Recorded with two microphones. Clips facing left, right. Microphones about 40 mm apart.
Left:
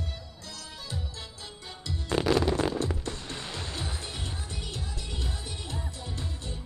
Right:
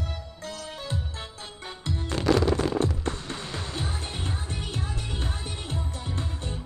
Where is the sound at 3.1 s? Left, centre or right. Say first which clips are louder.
Right 4 dB; right.